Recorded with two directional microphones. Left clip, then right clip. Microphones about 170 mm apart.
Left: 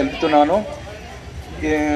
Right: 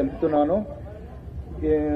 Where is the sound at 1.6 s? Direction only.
25° right (ahead or behind).